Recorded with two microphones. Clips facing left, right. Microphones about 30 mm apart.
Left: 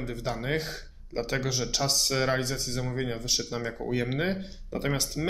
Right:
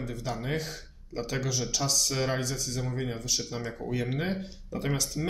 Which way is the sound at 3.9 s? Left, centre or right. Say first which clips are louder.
Left 2 dB; left.